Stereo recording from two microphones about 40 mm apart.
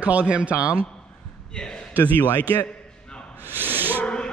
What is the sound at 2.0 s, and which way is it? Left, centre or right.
Speech, left.